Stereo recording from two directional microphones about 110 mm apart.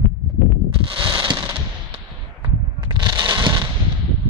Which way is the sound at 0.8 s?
45° right (ahead or behind).